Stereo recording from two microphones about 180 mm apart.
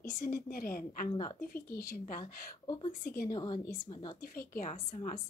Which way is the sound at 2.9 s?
45° left (ahead or behind).